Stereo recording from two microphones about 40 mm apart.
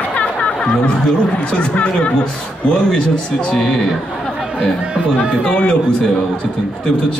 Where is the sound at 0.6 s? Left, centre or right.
Left.